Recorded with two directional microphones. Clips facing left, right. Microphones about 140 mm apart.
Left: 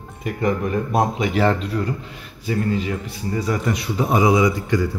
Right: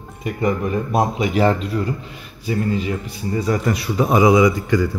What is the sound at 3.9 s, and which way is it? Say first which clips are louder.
Speech: right 3 dB; 90° right.